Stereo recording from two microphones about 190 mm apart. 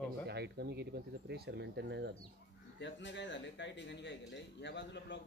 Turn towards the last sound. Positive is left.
turn(degrees=70)  # may be behind; listen again after turning